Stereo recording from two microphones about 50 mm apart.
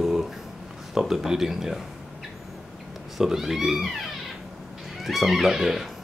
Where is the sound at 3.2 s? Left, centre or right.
Centre.